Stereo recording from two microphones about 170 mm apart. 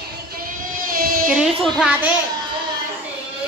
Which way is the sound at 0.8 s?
55° right (ahead or behind).